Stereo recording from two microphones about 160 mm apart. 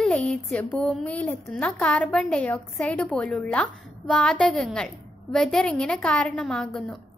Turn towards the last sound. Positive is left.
turn(degrees=5)  # may be behind; listen again after turning